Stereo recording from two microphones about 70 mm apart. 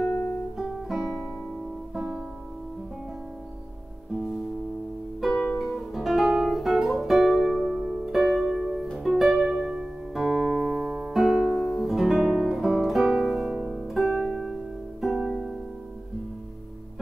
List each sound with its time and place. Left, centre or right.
0.6 s guitar: centre
2.0 s music: centre
4.1 s music: centre
5.3 s music: centre